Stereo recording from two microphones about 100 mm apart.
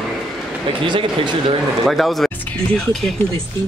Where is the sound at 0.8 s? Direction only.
55° right (ahead or behind).